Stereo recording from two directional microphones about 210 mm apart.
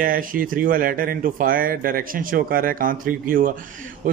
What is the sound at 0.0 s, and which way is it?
Speech, 40° right (ahead or behind).